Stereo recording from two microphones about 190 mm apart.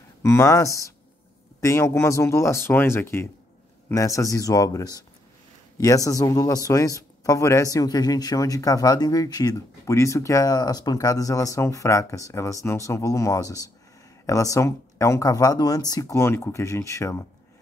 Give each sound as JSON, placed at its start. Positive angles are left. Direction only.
{"t": 0.2, "sound": "speech", "side_deg": 15}